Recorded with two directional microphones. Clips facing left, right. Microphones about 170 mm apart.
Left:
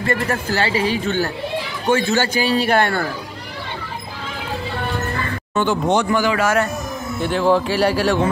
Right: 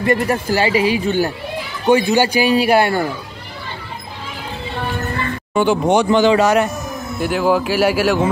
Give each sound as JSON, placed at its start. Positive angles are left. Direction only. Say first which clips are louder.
{"t": 0.0, "sound": "speech", "louder": "right 4 dB", "side_deg": -15}
{"t": 5.5, "sound": "a man's voice", "louder": "right 3 dB", "side_deg": -10}
{"t": 6.0, "sound": "speech", "louder": "right 5 dB", "side_deg": -25}
{"t": 7.2, "sound": "speech", "louder": "even", "side_deg": -5}